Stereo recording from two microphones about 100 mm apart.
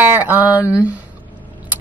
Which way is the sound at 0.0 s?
20° right (ahead or behind).